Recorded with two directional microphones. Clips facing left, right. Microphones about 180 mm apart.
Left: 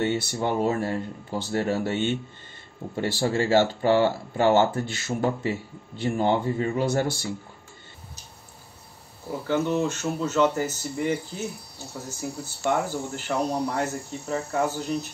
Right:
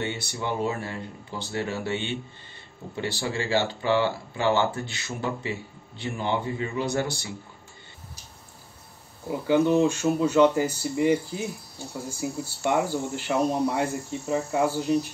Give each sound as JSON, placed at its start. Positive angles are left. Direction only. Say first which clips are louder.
{"t": 0.0, "sound": "speech", "louder": "left 6 dB", "side_deg": 50}
{"t": 9.3, "sound": "speech", "louder": "right 4 dB", "side_deg": -10}